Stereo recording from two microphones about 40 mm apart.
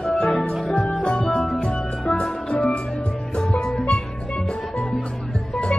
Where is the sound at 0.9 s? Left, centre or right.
Left.